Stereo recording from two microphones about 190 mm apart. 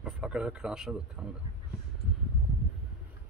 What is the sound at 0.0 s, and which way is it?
Speech, 5° right (ahead or behind).